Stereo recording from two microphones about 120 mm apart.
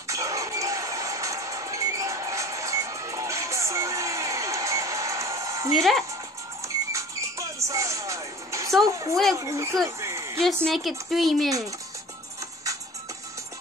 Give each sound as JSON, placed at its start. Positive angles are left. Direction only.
{"t": 0.1, "sound": "music", "side_deg": -25}
{"t": 5.8, "sound": "a woman's voice", "side_deg": 0}
{"t": 6.9, "sound": "music", "side_deg": -25}
{"t": 8.8, "sound": "speech", "side_deg": -30}
{"t": 9.8, "sound": "a sound", "side_deg": -25}
{"t": 10.4, "sound": "a woman's voice", "side_deg": 0}